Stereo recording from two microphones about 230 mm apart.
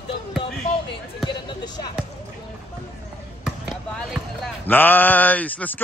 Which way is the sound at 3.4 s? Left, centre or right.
Centre.